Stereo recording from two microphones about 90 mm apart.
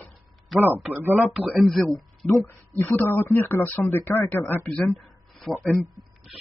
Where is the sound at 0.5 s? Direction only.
Centre (ahead or behind).